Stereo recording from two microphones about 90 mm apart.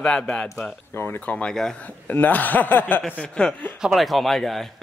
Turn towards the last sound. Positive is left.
turn(degrees=0)  # may be behind; listen again after turning